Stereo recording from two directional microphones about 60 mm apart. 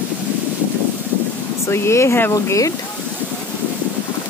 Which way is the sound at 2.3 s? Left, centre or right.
Left.